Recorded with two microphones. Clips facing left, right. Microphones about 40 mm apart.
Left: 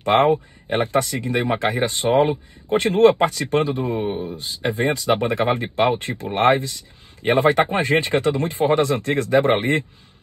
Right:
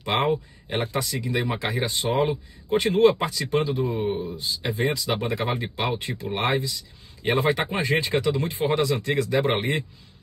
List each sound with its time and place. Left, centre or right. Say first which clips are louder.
0.0 s speech: left 7 dB; left